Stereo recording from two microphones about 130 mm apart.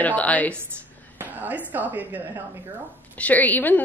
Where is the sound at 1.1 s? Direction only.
15° right (ahead or behind).